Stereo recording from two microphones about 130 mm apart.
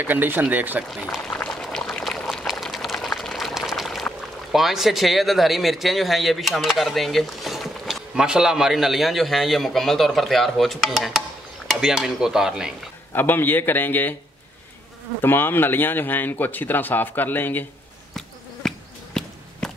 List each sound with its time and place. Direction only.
0.0 s speech: 15° right (ahead or behind)
1.3 s boiling: 5° left (ahead or behind)
13.1 s speech: 15° left (ahead or behind)
15.2 s speech: 15° left (ahead or behind)
18.6 s insect: 5° left (ahead or behind)